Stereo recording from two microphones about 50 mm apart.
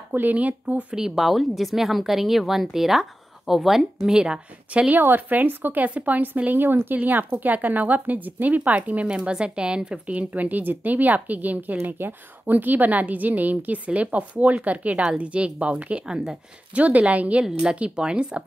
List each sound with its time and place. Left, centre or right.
0.1 s speech: right
0.9 s a woman's voice: centre
4.9 s speech: right
5.9 s speech: right
17.5 s speech: centre